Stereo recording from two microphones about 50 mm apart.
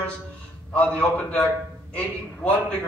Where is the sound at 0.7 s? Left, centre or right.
Left.